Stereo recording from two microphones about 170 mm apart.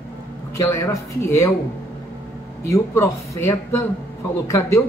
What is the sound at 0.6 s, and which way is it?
Speech, 15° left (ahead or behind).